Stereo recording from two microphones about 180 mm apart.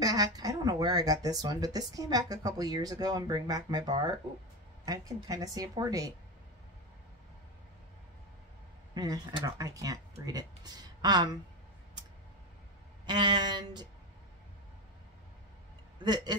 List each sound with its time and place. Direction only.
0.0 s speech: 20° right (ahead or behind)
8.9 s speech: 20° right (ahead or behind)
13.0 s speech: 25° right (ahead or behind)
16.0 s speech: 25° right (ahead or behind)